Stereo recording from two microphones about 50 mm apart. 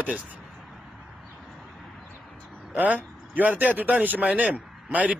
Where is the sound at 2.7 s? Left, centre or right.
Right.